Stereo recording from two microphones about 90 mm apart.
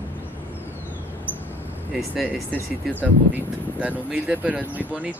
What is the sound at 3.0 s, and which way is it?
Speech, 20° right (ahead or behind).